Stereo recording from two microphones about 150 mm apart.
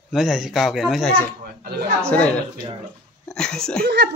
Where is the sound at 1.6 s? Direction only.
90° right.